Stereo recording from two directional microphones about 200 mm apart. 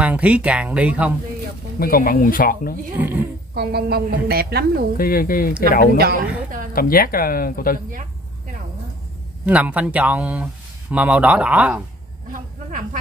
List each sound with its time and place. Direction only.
0.0 s speech: 5° right (ahead or behind)
1.8 s speech: 45° left (ahead or behind)
3.0 s speech: 10° right (ahead or behind)
3.5 s a woman's voice: 55° right (ahead or behind)
4.9 s speech: 45° left (ahead or behind)
7.9 s insect: 40° right (ahead or behind)
9.5 s speech: 5° right (ahead or behind)
12.3 s speech: 40° right (ahead or behind)